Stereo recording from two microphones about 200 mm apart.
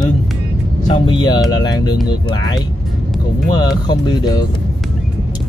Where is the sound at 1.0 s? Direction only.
20° left (ahead or behind).